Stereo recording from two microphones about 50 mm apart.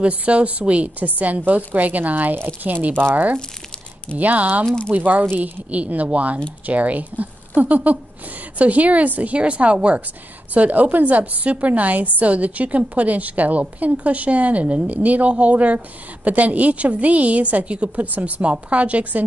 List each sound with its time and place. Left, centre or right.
0.0 s a woman's voice: right
4.2 s a woman's voice: right